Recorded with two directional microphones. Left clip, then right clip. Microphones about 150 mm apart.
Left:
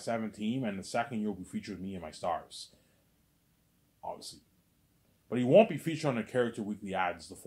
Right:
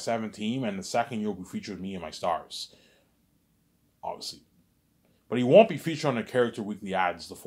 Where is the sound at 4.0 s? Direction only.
30° right (ahead or behind).